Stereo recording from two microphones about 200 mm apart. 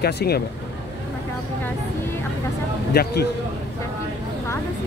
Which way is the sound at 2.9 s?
50° left (ahead or behind).